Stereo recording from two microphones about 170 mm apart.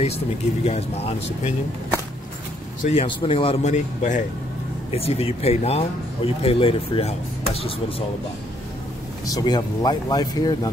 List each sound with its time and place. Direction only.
0.7 s speech: 35° left (ahead or behind)
2.8 s speech: 35° left (ahead or behind)
9.2 s speech: 25° left (ahead or behind)